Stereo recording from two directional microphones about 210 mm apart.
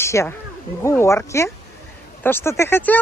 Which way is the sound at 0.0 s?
15° left (ahead or behind).